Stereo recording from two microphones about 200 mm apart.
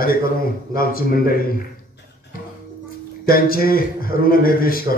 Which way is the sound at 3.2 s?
45° left (ahead or behind).